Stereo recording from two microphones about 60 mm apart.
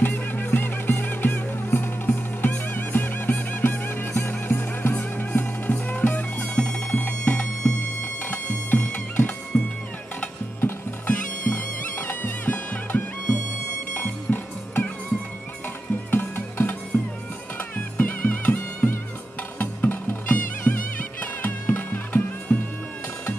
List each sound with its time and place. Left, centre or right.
0.0 s music: left
6.5 s music: centre
9.5 s music: centre
11.1 s music: left
16.1 s music: left